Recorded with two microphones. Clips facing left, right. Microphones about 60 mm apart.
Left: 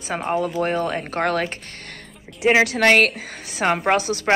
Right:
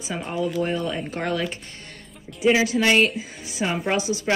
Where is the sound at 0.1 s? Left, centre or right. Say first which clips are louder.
Left 3 dB; left.